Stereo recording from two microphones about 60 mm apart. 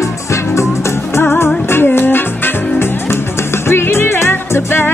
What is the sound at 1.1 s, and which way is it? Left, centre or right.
Music, left.